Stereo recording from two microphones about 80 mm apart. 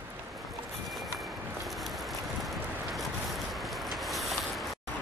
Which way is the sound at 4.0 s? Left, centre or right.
Centre.